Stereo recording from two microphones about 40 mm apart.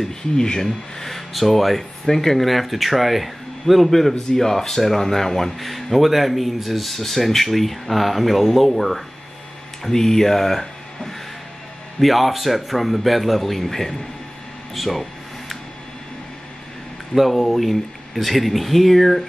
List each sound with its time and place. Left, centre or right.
0.0 s speech: centre
0.9 s speech: centre
14.7 s a sound: centre
17.1 s speech: centre